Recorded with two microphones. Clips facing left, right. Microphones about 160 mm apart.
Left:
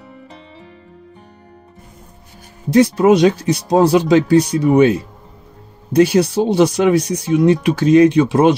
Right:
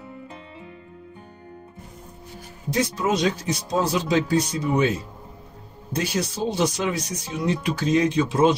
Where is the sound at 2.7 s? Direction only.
65° left (ahead or behind).